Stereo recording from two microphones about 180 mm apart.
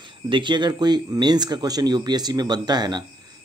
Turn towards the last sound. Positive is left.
turn(degrees=-25)  # may be behind; listen again after turning